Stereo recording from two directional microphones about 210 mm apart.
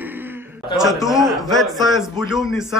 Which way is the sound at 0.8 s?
Centre (ahead or behind).